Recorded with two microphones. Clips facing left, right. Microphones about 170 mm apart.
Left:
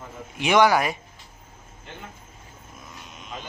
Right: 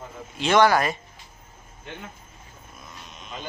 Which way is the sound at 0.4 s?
10° left (ahead or behind).